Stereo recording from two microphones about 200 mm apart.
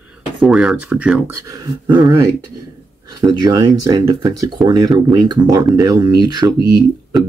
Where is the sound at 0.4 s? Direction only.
Centre (ahead or behind).